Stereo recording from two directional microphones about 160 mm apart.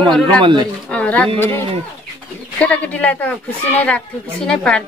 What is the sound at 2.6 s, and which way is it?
Speech, 10° left (ahead or behind).